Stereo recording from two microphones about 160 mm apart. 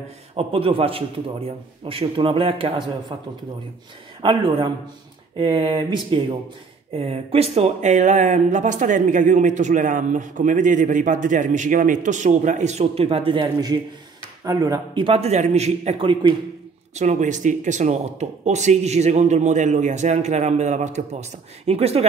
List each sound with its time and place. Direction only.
0.4 s a man's voice: 35° right (ahead or behind)
4.2 s a man's voice: 30° right (ahead or behind)
16.9 s speech: 45° right (ahead or behind)